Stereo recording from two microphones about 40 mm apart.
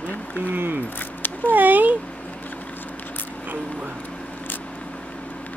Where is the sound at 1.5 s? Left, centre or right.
Right.